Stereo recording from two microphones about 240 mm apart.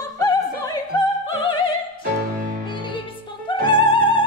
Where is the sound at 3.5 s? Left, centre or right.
Centre.